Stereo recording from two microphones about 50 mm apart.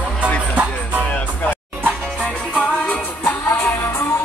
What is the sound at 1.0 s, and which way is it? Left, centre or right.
Music, left.